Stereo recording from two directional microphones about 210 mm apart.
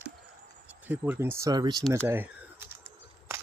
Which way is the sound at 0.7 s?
10° right (ahead or behind).